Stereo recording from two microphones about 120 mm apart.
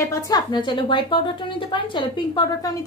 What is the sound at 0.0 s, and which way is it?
Speech, 25° left (ahead or behind).